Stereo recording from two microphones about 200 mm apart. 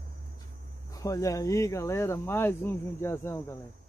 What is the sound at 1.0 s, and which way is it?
Speech, 15° left (ahead or behind).